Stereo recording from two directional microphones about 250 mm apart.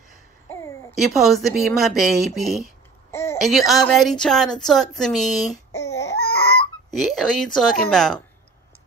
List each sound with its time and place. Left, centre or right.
0.5 s a sound: centre
1.0 s a woman's voice: centre
3.1 s a sound: centre
3.3 s a woman's voice: centre
5.7 s baby cry: centre
5.9 s baby cry: left
6.9 s a woman's voice: centre